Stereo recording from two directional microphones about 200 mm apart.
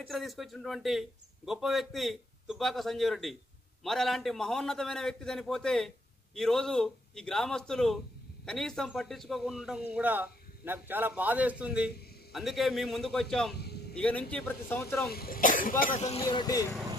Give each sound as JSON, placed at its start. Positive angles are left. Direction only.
{"t": 0.0, "sound": "a man's voice", "side_deg": 0}
{"t": 13.6, "sound": "a sound", "side_deg": 55}
{"t": 13.9, "sound": "speech", "side_deg": 5}
{"t": 15.0, "sound": "speech", "side_deg": 50}
{"t": 16.2, "sound": "speech", "side_deg": 20}